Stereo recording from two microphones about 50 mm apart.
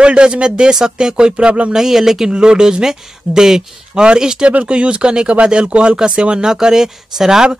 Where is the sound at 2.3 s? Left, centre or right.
Centre.